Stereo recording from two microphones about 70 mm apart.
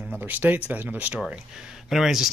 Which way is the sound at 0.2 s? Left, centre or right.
Right.